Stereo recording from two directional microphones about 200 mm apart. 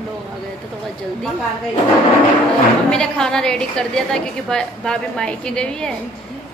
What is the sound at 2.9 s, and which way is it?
A woman's voice, 5° left (ahead or behind).